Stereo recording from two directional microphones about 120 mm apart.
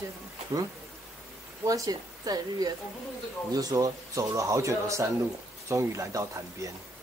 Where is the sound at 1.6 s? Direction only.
30° right (ahead or behind).